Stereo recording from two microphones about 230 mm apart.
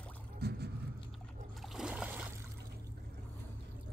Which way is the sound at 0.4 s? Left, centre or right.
Right.